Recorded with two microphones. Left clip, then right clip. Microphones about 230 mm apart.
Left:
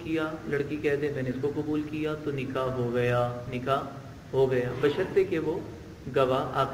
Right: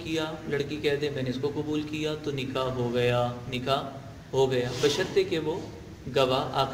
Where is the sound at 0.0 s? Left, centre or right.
Right.